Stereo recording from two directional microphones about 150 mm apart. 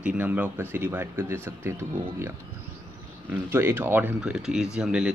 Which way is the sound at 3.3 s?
15° right (ahead or behind).